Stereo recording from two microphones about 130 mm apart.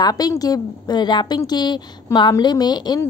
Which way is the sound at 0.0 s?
30° left (ahead or behind).